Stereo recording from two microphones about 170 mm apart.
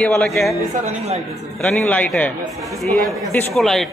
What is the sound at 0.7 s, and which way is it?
Speech, 40° right (ahead or behind).